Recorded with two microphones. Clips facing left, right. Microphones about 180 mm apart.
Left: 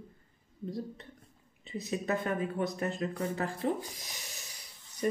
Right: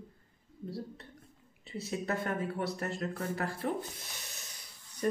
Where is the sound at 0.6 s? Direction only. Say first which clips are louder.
Left 3 dB; 15° left (ahead or behind).